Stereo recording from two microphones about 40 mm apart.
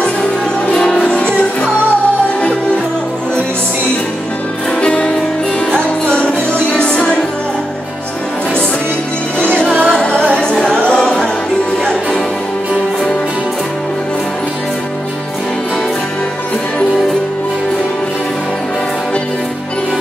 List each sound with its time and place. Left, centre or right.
0.9 s music: left
4.8 s music: left
6.7 s music: left
9.8 s music: centre
10.5 s singing: centre
10.8 s music: centre